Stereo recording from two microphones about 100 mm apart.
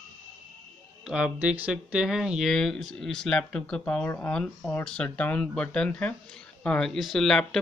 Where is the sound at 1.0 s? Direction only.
10° right (ahead or behind).